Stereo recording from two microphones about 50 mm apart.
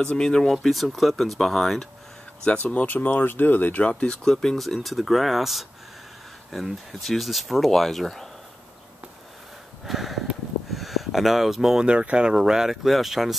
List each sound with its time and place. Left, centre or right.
0.0 s speech: centre
2.4 s speech: left
3.9 s speech: centre
4.6 s speech: centre
9.8 s snort: centre
10.7 s speech: centre
11.9 s speech: right; by 13.4 s centre